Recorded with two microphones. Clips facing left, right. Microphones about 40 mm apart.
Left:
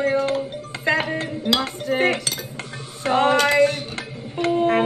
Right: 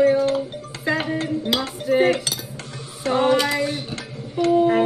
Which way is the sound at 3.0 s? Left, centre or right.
Left.